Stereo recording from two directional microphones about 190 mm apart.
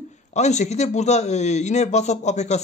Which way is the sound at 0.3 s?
35° left (ahead or behind).